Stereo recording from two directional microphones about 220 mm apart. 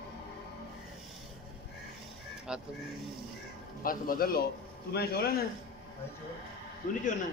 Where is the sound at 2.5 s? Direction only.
5° right (ahead or behind).